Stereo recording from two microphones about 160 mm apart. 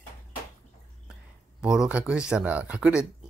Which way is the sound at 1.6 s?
5° right (ahead or behind).